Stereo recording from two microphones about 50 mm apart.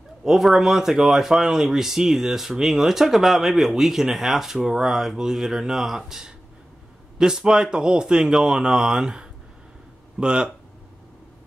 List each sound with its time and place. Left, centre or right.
0.2 s speech: centre